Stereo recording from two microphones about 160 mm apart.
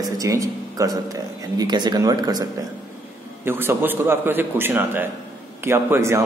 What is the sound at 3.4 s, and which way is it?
A man's voice, 15° right (ahead or behind).